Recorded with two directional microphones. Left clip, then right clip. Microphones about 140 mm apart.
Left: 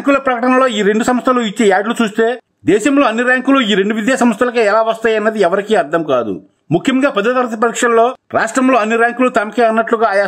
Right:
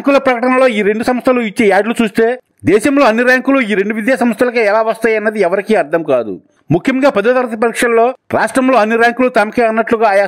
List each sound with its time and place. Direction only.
0.0 s a man's voice: 40° right (ahead or behind)